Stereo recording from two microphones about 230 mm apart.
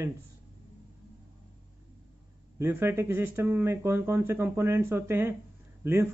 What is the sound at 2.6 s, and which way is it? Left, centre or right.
Speech, centre.